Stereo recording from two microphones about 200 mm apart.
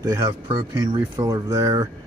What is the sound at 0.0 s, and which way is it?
Speech, 20° right (ahead or behind).